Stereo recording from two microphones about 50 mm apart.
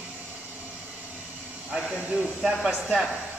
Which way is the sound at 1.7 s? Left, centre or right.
Right.